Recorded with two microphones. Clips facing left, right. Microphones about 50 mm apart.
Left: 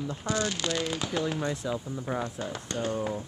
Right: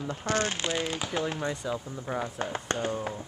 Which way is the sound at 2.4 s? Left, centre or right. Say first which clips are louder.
Right 4 dB; right.